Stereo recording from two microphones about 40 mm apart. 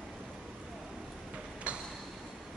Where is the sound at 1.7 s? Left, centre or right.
Right.